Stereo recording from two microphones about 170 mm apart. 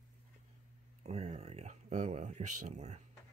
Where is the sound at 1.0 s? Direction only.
40° right (ahead or behind).